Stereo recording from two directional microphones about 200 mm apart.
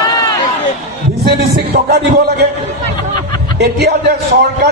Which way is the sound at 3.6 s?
55° right (ahead or behind).